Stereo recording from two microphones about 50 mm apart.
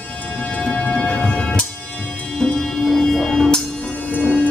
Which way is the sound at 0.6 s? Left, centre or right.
Centre.